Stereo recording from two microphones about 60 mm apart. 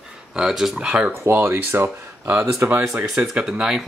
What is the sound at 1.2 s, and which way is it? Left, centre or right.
Speech, right.